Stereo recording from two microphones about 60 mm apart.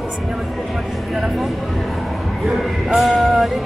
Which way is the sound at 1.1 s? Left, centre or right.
Centre.